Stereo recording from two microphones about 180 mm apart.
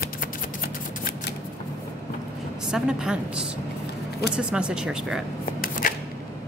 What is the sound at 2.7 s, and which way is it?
Speech, 5° right (ahead or behind).